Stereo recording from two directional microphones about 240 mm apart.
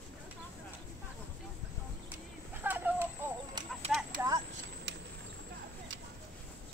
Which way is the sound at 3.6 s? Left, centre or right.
Centre.